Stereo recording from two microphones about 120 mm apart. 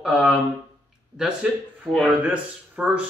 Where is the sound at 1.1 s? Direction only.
5° right (ahead or behind).